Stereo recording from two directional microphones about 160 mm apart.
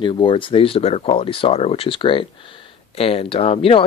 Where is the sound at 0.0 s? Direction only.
30° left (ahead or behind).